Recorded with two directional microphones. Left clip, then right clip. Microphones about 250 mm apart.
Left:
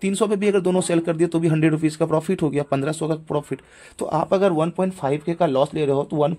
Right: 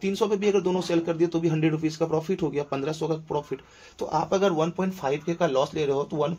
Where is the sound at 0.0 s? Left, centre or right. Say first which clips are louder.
Left 4 dB; left.